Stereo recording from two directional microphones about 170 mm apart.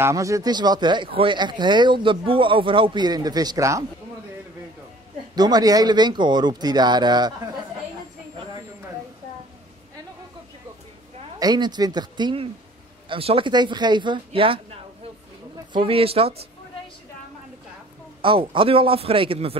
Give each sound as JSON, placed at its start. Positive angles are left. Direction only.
{"t": 0.0, "sound": "speech", "side_deg": -20}
{"t": 5.3, "sound": "speech", "side_deg": -25}
{"t": 11.3, "sound": "speech", "side_deg": -25}
{"t": 18.2, "sound": "a man's voice", "side_deg": -30}